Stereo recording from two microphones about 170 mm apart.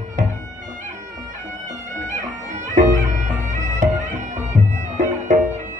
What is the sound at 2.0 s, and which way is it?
Bagpipes, 45° right (ahead or behind).